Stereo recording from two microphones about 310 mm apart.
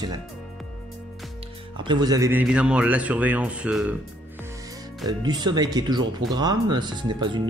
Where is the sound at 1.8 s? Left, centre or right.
Centre.